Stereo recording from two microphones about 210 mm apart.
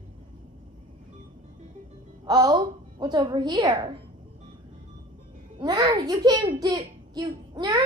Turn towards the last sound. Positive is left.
turn(degrees=-20)  # may be behind; listen again after turning